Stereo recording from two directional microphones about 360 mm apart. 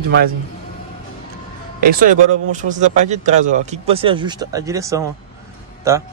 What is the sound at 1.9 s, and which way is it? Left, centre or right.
Speech, right.